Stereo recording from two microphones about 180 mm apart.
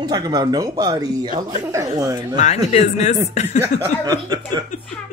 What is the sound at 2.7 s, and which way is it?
Speech, 40° left (ahead or behind).